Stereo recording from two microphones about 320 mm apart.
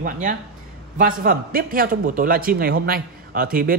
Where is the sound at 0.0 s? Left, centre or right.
Right.